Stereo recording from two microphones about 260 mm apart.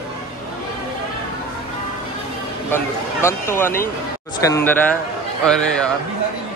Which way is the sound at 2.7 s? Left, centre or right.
Centre.